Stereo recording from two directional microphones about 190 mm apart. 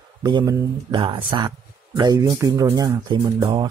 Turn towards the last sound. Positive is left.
turn(degrees=-20)  # may be behind; listen again after turning